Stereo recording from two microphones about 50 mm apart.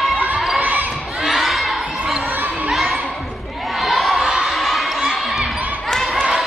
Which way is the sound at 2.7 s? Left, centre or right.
Centre.